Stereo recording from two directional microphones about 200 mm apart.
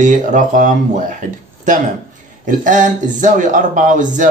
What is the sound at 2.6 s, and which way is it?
Speech, 40° right (ahead or behind).